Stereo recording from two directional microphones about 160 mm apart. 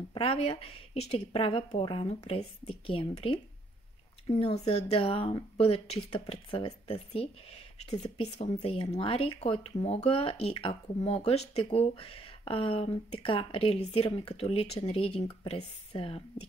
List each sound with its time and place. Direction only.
0.1 s speech: 35° left (ahead or behind)